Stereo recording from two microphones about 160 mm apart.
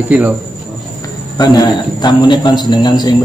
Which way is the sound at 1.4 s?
25° left (ahead or behind).